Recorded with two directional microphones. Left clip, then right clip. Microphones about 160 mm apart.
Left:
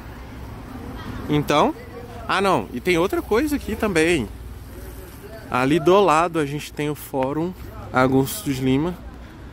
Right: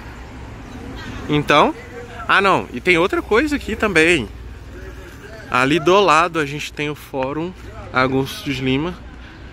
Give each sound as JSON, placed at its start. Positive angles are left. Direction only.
{"t": 1.3, "sound": "speech", "side_deg": 5}
{"t": 5.5, "sound": "speech", "side_deg": 15}